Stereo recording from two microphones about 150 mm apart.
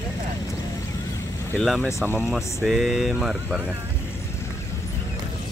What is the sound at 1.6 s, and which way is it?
Speech, centre (ahead or behind).